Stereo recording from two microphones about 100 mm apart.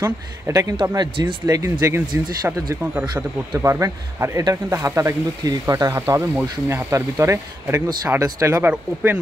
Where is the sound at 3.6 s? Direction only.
30° right (ahead or behind).